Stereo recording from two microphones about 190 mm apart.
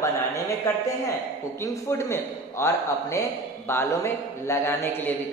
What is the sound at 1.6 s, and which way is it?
A man's voice, 15° left (ahead or behind).